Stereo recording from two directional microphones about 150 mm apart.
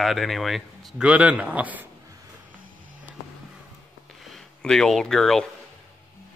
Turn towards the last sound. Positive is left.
turn(degrees=0)  # may be behind; listen again after turning